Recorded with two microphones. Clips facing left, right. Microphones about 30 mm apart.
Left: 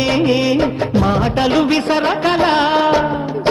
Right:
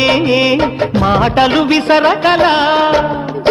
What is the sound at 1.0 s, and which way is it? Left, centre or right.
Music, right.